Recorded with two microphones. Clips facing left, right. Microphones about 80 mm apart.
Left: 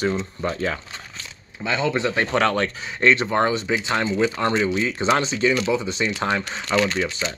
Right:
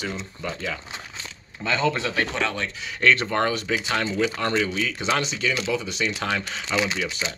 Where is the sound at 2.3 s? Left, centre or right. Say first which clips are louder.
Left 7 dB; left.